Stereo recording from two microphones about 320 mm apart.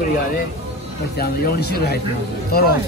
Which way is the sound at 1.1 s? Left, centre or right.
Left.